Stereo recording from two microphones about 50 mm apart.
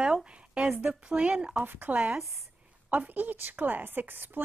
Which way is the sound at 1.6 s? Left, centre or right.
Right.